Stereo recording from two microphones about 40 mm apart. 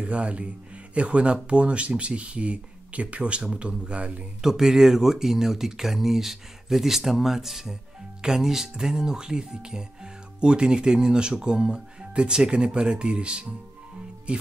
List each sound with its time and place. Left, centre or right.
0.0 s speech: right
4.4 s speech: centre